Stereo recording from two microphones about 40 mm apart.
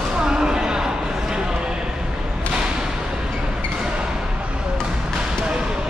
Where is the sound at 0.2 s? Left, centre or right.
Centre.